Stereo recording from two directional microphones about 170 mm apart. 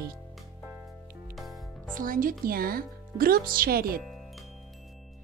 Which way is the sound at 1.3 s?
Centre (ahead or behind).